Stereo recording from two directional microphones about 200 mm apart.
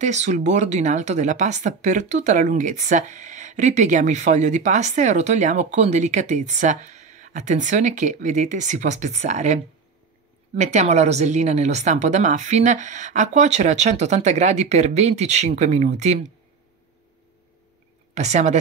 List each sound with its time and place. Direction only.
0.0 s speech: 35° right (ahead or behind)
18.1 s speech: 35° right (ahead or behind)